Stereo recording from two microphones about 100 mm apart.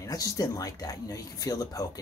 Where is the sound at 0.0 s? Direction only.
35° left (ahead or behind).